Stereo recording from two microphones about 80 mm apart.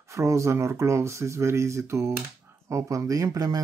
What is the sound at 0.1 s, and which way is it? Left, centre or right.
Speech, right.